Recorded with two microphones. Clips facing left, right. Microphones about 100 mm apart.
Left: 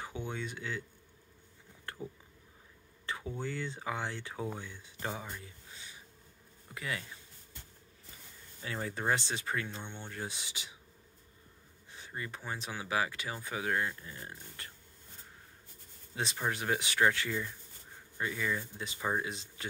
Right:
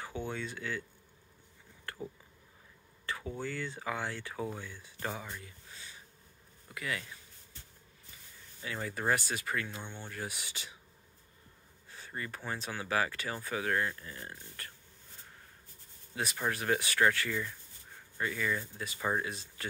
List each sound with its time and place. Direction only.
0.0 s speech: 20° left (ahead or behind)
1.9 s a sound: 20° left (ahead or behind)
3.3 s speech: 20° left (ahead or behind)
5.4 s a sound: 20° left (ahead or behind)
6.7 s speech: 25° left (ahead or behind)
8.6 s speech: 25° left (ahead or behind)
11.9 s speech: 15° left (ahead or behind)
16.3 s speech: 15° left (ahead or behind)
18.9 s speech: 5° left (ahead or behind)
19.2 s speech: 20° left (ahead or behind)